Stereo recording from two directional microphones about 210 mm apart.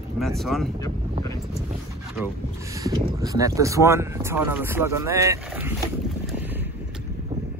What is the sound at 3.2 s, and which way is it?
Speech, 15° right (ahead or behind).